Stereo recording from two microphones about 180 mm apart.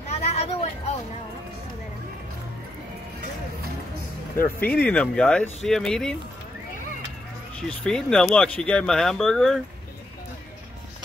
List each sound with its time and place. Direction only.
0.1 s a sound: 35° left (ahead or behind)
4.4 s speech: 10° left (ahead or behind)
7.6 s speech: 5° left (ahead or behind)